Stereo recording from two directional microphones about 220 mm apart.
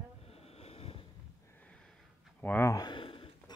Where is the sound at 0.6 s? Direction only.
25° left (ahead or behind).